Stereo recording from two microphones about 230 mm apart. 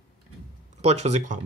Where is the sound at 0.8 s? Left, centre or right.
Right.